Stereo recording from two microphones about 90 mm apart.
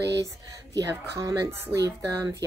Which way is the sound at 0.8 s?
35° right (ahead or behind).